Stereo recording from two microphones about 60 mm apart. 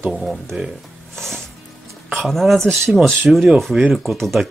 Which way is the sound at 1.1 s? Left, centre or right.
Centre.